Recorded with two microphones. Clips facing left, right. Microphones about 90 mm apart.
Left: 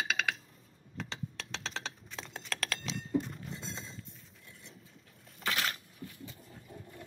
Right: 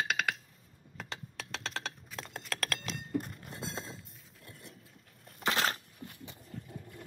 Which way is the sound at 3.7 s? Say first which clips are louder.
Right 3 dB; 50° right (ahead or behind).